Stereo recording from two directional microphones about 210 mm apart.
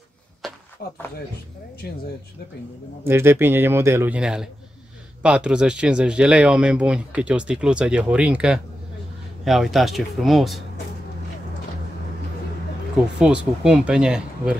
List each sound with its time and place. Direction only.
0.4 s a sound: centre (ahead or behind)
3.1 s speech: 10° right (ahead or behind)
13.2 s speech: 5° right (ahead or behind)